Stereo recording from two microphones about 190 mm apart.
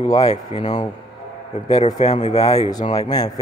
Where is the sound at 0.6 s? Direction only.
20° left (ahead or behind).